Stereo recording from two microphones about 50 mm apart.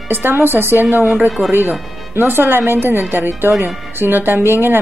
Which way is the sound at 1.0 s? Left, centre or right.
Right.